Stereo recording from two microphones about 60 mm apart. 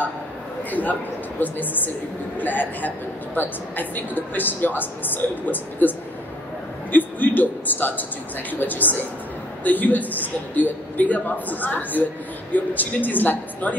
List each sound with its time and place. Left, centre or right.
0.7 s a man's voice: left